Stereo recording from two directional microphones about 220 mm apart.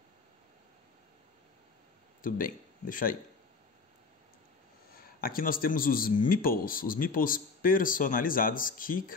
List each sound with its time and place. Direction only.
2.2 s speech: 40° left (ahead or behind)
4.9 s speech: 40° left (ahead or behind)